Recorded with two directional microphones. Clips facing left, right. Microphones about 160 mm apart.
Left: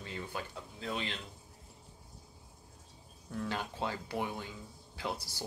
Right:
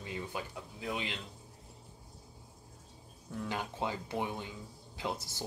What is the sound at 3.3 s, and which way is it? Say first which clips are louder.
Speech: even; 15° right (ahead or behind).